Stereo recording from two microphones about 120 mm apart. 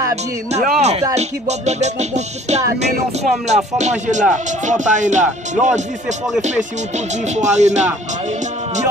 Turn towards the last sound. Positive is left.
turn(degrees=-75)  # may be behind; listen again after turning